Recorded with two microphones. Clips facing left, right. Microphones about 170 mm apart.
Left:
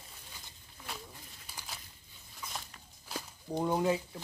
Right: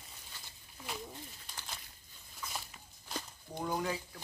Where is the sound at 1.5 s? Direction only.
5° left (ahead or behind).